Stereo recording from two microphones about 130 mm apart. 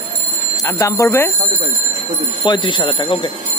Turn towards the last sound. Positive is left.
turn(degrees=40)  # may be behind; listen again after turning